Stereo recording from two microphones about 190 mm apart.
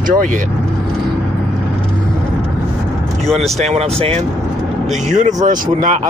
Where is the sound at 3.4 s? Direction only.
35° right (ahead or behind).